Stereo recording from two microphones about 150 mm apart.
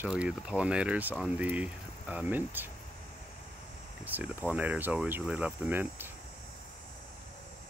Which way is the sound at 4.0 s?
10° right (ahead or behind).